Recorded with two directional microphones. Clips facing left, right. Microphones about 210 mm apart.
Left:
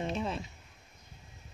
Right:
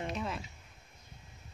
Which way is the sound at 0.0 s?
30° left (ahead or behind).